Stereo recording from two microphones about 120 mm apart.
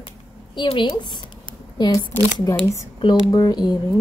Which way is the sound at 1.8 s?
30° left (ahead or behind).